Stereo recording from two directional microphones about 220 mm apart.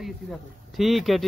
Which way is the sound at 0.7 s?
Centre (ahead or behind).